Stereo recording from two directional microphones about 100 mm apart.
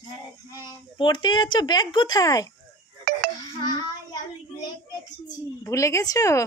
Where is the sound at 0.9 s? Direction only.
50° left (ahead or behind).